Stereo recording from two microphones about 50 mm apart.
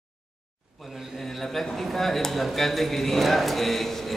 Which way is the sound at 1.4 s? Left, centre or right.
Centre.